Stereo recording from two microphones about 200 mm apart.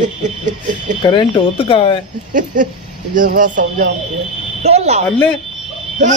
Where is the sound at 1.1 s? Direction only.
25° left (ahead or behind).